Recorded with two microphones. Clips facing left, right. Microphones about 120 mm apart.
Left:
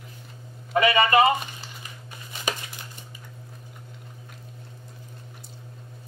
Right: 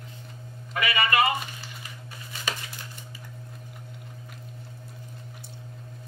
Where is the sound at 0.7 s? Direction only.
25° left (ahead or behind).